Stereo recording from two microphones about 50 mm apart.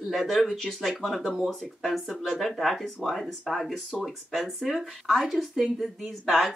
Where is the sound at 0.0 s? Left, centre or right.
Centre.